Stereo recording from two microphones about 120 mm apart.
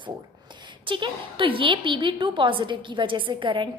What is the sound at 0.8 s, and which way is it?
A woman's voice, 45° right (ahead or behind).